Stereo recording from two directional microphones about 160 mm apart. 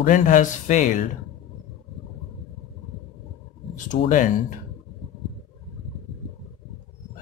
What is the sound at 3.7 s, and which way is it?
Speech, 50° left (ahead or behind).